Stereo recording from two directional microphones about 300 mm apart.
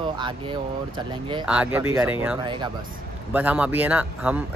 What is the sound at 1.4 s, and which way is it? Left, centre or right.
Speech, centre.